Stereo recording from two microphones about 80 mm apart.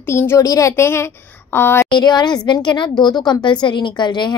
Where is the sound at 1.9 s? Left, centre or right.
Left.